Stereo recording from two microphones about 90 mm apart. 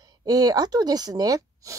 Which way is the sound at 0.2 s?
45° right (ahead or behind).